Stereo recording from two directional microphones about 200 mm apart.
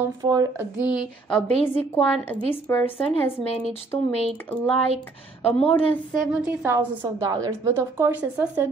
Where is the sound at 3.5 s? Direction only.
30° left (ahead or behind).